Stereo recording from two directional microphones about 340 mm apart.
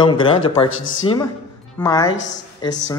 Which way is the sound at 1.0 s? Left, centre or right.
Centre.